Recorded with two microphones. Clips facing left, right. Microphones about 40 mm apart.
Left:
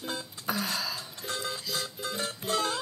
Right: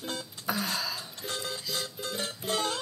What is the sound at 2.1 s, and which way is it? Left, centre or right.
Music, centre.